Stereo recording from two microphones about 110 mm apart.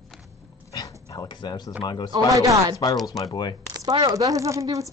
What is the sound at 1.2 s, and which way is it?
Speech, 40° left (ahead or behind).